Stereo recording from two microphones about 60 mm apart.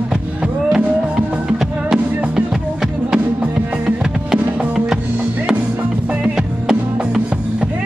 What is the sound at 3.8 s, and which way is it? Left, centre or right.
Music, centre.